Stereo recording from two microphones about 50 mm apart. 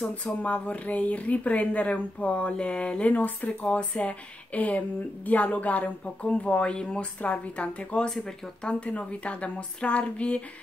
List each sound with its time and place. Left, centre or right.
0.1 s speech: left